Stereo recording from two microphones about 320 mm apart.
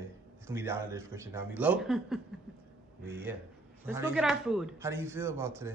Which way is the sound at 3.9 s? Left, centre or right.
Centre.